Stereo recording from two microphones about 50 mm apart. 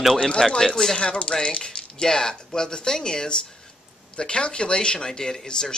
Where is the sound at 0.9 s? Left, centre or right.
Left.